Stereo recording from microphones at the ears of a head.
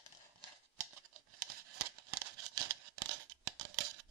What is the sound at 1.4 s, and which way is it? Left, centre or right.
Scissors, right.